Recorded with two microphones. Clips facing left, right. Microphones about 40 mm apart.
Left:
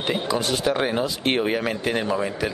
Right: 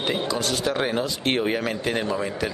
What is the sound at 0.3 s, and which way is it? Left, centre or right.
Speech, centre.